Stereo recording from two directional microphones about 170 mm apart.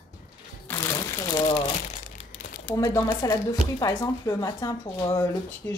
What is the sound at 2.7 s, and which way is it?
Speech, 20° left (ahead or behind).